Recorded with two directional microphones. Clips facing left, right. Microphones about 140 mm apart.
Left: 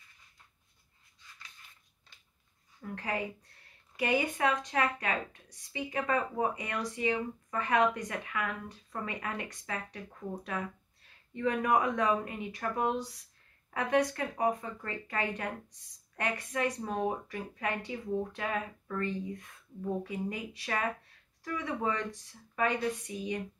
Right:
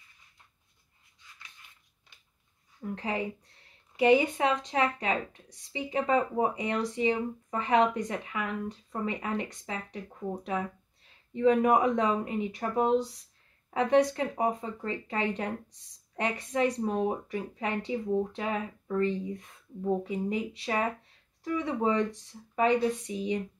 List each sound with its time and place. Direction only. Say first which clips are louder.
2.8 s speech: right 3 dB; 20° right (ahead or behind)
11.3 s speech: right 6 dB; 20° right (ahead or behind)